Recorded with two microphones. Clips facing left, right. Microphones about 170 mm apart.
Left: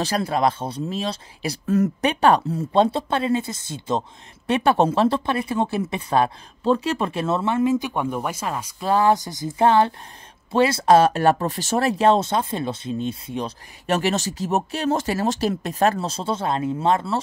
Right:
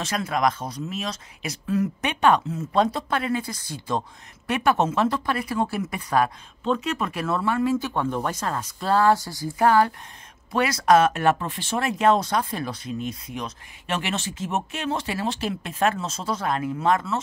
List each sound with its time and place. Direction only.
0.0 s speech: 35° left (ahead or behind)
13.8 s speech: 40° left (ahead or behind)